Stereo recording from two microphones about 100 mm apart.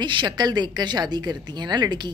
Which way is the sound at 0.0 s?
50° right (ahead or behind).